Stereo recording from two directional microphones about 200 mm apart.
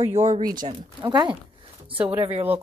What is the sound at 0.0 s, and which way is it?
Speech, 35° right (ahead or behind).